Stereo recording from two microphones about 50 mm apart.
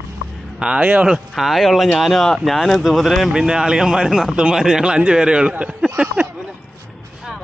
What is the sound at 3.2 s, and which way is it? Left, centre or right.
Speech, centre.